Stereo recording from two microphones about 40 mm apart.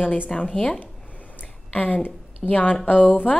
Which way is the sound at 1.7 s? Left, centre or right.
Left.